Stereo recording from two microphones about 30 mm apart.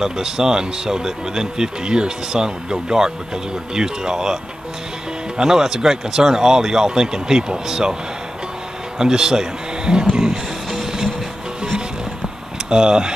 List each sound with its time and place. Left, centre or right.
0.0 s speech: centre
5.4 s speech: centre
8.9 s speech: right
9.8 s speech: right
10.8 s music: centre
12.6 s speech: right